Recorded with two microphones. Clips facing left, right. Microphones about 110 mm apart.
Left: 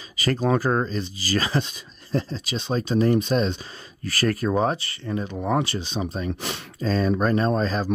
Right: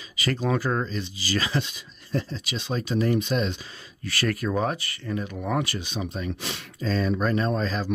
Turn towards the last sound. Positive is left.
turn(degrees=40)  # may be behind; listen again after turning